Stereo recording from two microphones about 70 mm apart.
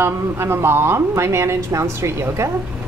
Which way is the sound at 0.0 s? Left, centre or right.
Right.